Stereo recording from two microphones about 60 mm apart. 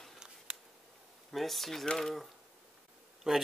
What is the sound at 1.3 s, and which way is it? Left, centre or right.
Speech, centre.